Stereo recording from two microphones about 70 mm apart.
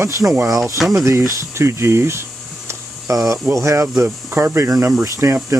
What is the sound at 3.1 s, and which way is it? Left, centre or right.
Speech, right.